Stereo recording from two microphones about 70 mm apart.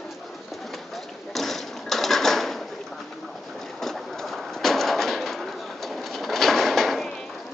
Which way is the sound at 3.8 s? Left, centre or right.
Centre.